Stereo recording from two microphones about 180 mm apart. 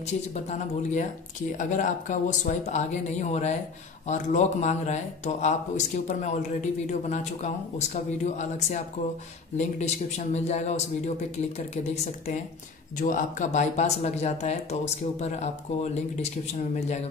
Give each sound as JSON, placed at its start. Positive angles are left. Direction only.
{"t": 0.0, "sound": "speech", "side_deg": 40}
{"t": 13.0, "sound": "speech", "side_deg": 45}